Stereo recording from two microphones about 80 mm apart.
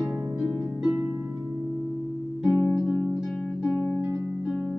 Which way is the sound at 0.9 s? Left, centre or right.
Centre.